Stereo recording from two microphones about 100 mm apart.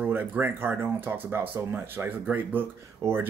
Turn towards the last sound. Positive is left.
turn(degrees=-20)  # may be behind; listen again after turning